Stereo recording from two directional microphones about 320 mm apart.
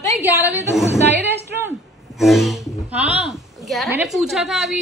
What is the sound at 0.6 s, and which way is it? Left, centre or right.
Speech, centre.